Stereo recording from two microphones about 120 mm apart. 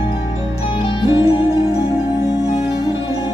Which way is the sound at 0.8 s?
50° left (ahead or behind).